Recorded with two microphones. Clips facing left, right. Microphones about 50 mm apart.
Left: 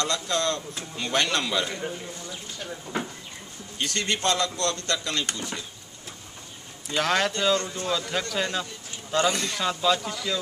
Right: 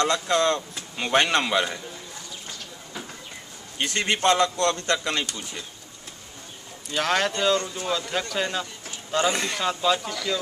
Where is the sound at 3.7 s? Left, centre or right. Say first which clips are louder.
Right 3 dB; right.